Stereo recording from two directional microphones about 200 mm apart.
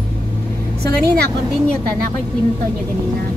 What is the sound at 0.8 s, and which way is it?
Speech, 55° right (ahead or behind).